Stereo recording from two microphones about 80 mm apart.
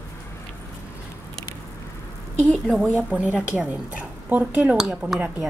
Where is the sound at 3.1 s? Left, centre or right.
Centre.